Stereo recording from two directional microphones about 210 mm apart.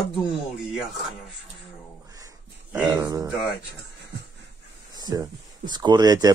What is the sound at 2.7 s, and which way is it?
Speech, 10° right (ahead or behind).